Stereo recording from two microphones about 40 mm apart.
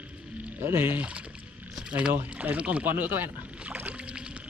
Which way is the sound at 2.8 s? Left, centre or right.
Right.